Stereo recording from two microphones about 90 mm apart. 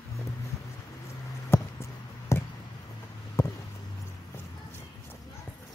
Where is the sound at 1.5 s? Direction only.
25° left (ahead or behind).